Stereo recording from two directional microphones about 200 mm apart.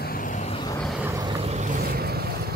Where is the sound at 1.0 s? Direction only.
15° right (ahead or behind).